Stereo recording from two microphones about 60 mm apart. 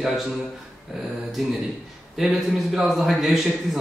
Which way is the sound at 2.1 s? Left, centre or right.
Centre.